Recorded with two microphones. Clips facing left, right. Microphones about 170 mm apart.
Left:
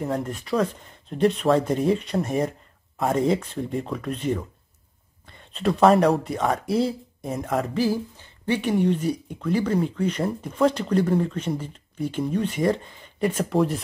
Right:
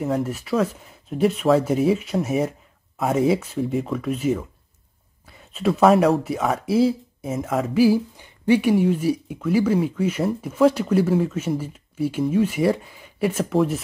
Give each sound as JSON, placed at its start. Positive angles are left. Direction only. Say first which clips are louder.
{"t": 0.0, "sound": "speech", "louder": "right 3 dB", "side_deg": -5}